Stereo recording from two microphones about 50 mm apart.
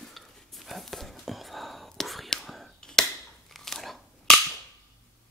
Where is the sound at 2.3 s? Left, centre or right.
Centre.